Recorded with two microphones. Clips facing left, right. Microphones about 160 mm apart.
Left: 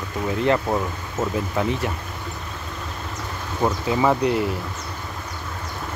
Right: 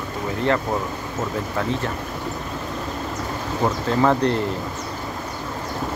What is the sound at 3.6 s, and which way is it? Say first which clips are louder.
Speech: even; 5° left (ahead or behind).